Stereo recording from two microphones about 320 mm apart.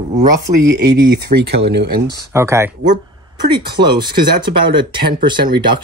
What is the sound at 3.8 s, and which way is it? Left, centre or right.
Speech, centre.